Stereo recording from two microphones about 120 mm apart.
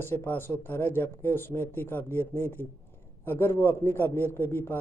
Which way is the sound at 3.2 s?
20° left (ahead or behind).